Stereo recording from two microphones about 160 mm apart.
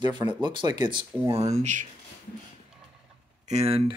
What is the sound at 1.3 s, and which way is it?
Speech, 45° right (ahead or behind).